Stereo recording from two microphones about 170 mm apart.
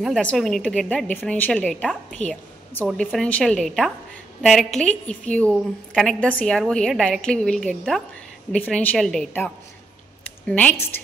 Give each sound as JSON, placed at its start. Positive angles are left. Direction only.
{"t": 0.0, "sound": "a woman's voice", "side_deg": 5}